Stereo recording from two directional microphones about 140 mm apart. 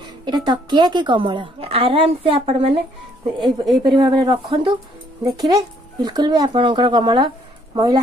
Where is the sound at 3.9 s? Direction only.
35° right (ahead or behind).